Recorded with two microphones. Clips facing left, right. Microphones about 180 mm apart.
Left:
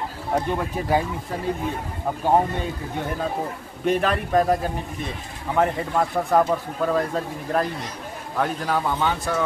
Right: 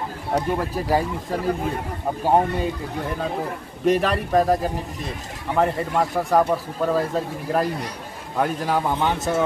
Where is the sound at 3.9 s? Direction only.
Centre (ahead or behind).